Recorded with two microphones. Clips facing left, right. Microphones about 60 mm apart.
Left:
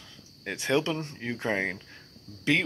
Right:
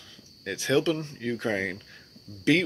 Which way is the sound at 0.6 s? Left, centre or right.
Centre.